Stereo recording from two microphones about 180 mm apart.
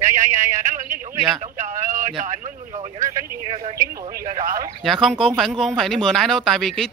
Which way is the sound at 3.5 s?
30° right (ahead or behind).